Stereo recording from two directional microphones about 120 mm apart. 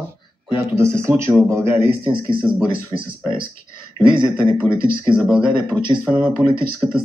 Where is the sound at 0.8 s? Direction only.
25° right (ahead or behind).